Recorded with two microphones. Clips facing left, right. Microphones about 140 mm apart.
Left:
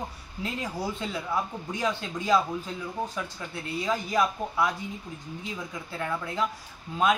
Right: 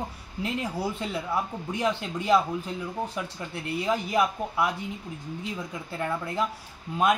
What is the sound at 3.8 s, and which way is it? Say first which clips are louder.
Speech: right 1 dB; 20° right (ahead or behind).